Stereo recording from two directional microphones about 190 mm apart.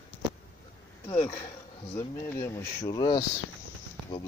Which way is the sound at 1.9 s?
15° left (ahead or behind).